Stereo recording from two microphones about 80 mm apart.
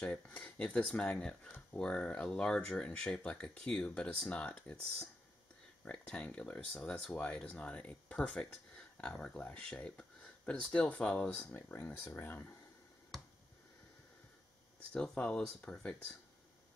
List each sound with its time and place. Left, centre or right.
0.0 s speech: centre
5.9 s speech: centre
11.5 s speech: left
14.9 s speech: centre